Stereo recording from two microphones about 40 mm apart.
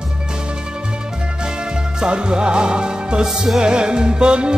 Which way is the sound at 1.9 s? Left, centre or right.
Right.